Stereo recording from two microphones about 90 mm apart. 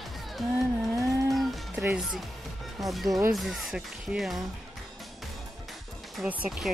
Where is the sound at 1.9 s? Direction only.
5° right (ahead or behind).